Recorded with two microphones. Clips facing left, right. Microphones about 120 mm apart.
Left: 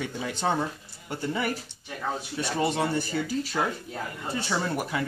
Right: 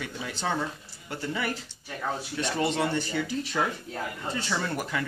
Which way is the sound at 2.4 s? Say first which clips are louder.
Left 1 dB; 10° left (ahead or behind).